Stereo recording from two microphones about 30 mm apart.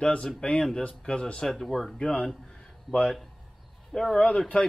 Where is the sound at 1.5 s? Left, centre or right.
Centre.